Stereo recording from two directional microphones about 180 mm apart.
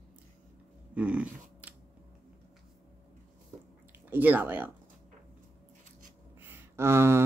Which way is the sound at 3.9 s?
10° right (ahead or behind).